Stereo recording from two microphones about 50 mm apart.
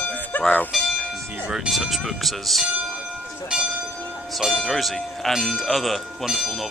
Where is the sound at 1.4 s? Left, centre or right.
Centre.